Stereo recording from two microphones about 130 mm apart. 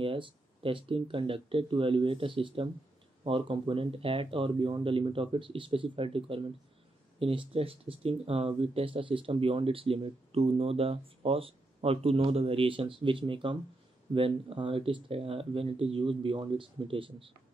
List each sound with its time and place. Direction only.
0.0 s speech: 45° right (ahead or behind)